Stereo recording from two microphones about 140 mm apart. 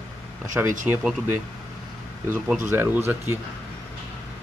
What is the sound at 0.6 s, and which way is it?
Speech, 15° right (ahead or behind).